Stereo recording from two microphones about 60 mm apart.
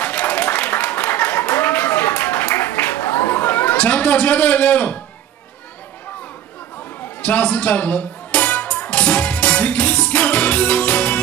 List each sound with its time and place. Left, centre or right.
0.0 s applause: left
3.7 s a man's voice: left
7.2 s music: left